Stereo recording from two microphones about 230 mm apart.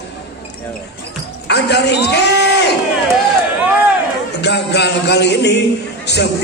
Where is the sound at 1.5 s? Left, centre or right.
Left.